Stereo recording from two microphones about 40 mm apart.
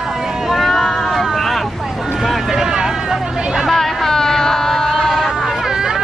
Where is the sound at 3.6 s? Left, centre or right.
Centre.